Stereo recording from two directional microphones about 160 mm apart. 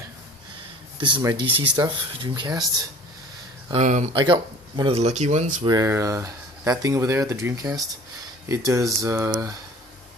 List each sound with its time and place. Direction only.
0.9 s speech: 30° right (ahead or behind)
3.7 s speech: 50° right (ahead or behind)
4.1 s speech: 30° right (ahead or behind); by 5.7 s 45° right (ahead or behind)
5.7 s speech: 20° right (ahead or behind)